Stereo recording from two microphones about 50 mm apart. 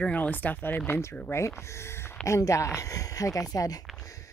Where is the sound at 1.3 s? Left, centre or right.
Left.